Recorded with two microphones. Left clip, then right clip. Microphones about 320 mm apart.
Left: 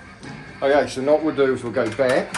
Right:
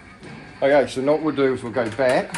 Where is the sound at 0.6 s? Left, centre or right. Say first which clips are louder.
Right 1 dB; right.